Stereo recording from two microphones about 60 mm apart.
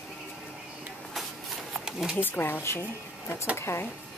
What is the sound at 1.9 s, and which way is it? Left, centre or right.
Speech, centre.